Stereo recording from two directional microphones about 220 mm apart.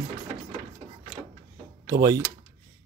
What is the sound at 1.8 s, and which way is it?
Speech, 15° right (ahead or behind).